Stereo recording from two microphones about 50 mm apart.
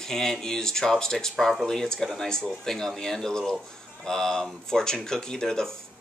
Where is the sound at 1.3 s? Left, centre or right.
Centre.